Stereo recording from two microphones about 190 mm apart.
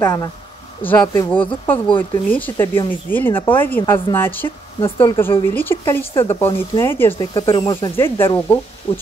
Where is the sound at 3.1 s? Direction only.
10° left (ahead or behind).